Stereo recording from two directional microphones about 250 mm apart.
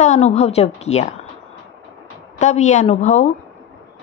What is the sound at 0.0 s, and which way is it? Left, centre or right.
Speech, left.